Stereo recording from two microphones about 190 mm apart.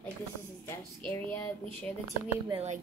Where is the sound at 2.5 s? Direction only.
30° right (ahead or behind).